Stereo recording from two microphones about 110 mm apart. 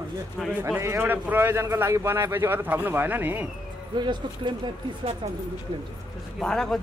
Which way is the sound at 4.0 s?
45° right (ahead or behind).